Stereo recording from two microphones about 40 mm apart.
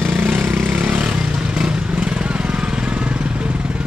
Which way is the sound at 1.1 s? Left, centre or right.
Right.